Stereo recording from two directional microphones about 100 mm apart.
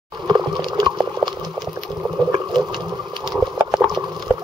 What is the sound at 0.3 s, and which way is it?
Water, 45° right (ahead or behind).